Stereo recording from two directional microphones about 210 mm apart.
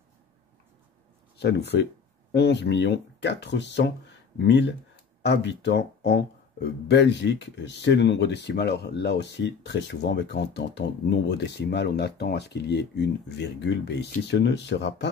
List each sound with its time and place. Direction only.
1.4 s speech: 50° left (ahead or behind)